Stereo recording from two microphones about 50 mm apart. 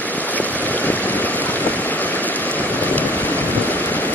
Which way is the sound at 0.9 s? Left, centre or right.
Left.